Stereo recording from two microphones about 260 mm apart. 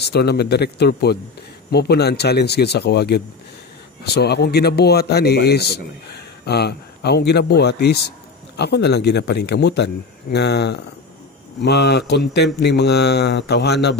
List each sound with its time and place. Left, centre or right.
0.0 s speech: left